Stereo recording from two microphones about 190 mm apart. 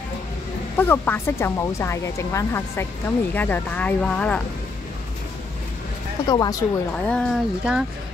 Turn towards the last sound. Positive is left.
turn(degrees=0)  # may be behind; listen again after turning